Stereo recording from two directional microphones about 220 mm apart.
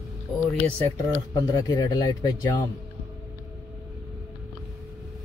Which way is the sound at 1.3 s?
15° left (ahead or behind).